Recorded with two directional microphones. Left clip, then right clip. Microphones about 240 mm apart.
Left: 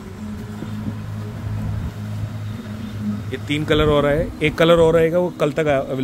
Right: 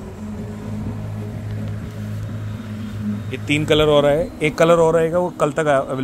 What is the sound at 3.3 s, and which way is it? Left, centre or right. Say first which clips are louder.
Speech: right 2 dB; centre.